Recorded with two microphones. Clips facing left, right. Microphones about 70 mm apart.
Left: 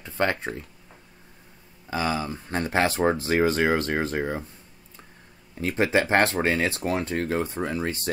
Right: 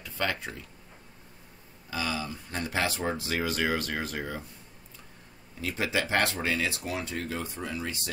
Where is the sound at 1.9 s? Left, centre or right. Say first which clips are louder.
Left 6 dB; left.